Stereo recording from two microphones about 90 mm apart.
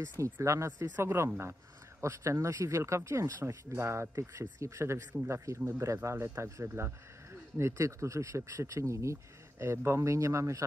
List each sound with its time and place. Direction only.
0.2 s speech: 35° right (ahead or behind)